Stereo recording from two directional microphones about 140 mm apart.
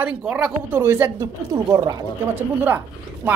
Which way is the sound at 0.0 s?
5° right (ahead or behind).